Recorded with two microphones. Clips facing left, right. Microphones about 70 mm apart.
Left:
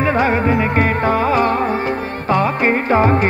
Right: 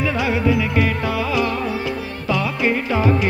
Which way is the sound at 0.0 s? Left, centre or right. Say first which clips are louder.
Left 4 dB; left.